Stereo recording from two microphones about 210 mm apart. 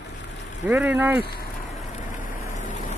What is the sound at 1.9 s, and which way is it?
Vehicle, 40° left (ahead or behind).